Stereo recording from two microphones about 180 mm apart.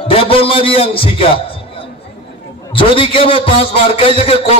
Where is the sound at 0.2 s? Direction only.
30° left (ahead or behind).